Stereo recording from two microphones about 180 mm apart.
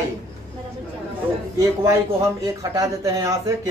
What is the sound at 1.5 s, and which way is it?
Speech, 15° right (ahead or behind).